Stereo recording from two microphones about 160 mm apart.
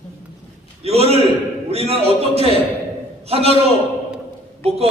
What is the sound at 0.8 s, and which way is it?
A man's voice, 40° right (ahead or behind).